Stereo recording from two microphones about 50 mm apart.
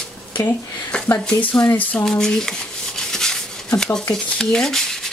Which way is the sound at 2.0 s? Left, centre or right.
Centre.